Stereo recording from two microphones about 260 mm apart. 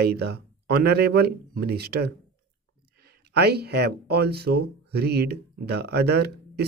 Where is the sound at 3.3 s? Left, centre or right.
Right.